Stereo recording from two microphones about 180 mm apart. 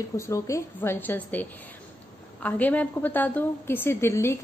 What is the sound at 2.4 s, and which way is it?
A woman's voice, 10° left (ahead or behind).